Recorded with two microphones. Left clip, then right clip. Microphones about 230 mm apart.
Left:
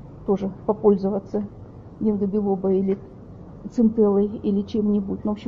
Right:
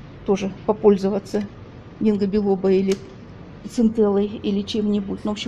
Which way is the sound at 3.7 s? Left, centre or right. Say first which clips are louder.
Even; centre.